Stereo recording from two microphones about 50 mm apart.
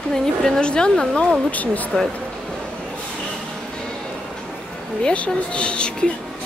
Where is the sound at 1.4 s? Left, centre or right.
Left.